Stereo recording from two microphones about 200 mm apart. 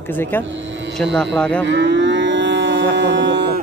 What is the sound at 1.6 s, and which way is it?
Moo, 65° right (ahead or behind).